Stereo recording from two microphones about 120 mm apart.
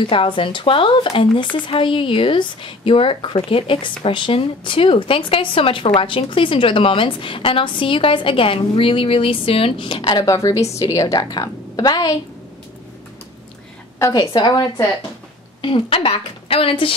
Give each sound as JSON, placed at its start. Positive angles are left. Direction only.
{"t": 0.0, "sound": "a woman's voice", "side_deg": 45}
{"t": 10.2, "sound": "a woman's voice", "side_deg": 25}
{"t": 14.1, "sound": "a woman's voice", "side_deg": 35}
{"t": 15.6, "sound": "a woman's voice", "side_deg": 50}